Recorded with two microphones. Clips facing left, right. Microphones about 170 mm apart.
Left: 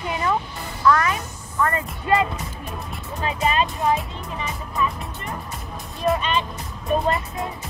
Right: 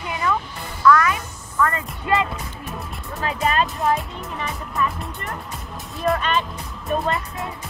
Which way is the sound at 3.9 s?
Centre (ahead or behind).